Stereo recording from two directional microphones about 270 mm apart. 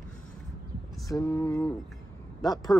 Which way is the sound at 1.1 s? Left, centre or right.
Centre.